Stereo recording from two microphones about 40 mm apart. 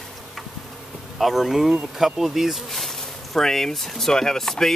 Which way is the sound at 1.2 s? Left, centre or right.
Centre.